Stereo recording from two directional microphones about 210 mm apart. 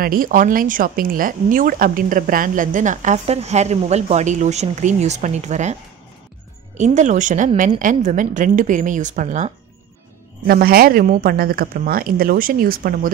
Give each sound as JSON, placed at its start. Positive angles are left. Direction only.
{"t": 0.0, "sound": "speech", "side_deg": -40}
{"t": 6.8, "sound": "speech", "side_deg": -35}